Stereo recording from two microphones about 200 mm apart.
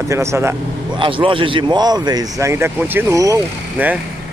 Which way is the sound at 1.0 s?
25° right (ahead or behind).